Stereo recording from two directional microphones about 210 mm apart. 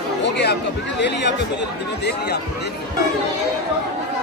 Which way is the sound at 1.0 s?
55° left (ahead or behind).